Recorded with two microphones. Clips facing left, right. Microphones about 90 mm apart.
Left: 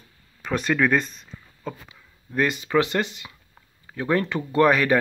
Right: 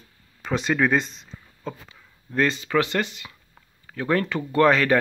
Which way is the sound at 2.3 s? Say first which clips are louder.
Even; 15° left (ahead or behind).